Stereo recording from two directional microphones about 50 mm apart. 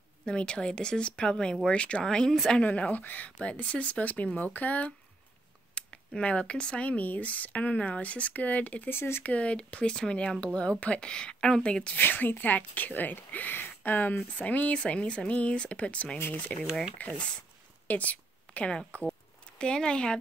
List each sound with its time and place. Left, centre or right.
0.2 s speech: centre
2.0 s speech: centre
2.6 s speech: left
5.8 s speech: centre
8.8 s speech: left
9.2 s speech: left
12.0 s speech: left
14.4 s speech: left
17.0 s speech: left
17.8 s a sound: left
18.7 s speech: centre